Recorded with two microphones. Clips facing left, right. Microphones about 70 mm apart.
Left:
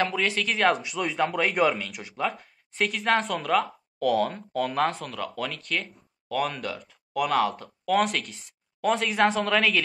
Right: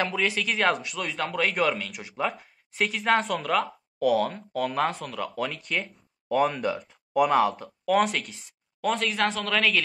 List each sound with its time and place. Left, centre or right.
0.0 s a man's voice: centre
6.2 s speech: right
6.9 s a sound: right
7.3 s a man's voice: centre